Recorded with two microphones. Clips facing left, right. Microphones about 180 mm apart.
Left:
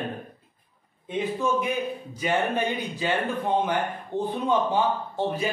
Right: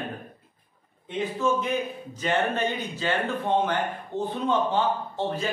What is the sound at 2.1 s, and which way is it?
A man's voice, 10° left (ahead or behind).